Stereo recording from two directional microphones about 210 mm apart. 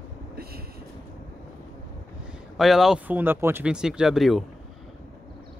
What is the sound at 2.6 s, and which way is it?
Speech, centre (ahead or behind).